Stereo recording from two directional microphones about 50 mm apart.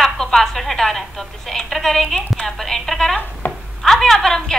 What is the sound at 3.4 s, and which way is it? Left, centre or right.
Chopping, left.